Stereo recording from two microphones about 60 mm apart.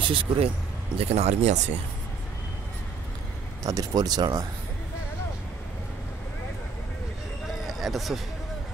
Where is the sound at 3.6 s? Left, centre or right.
Right.